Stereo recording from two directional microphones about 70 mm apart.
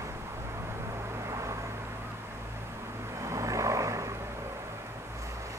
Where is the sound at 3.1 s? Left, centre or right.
Right.